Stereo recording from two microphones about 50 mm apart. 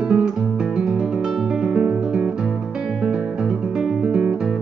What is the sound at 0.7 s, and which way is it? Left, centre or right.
Music, centre.